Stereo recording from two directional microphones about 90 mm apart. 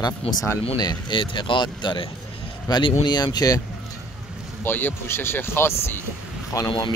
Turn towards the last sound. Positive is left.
turn(degrees=40)  # may be behind; listen again after turning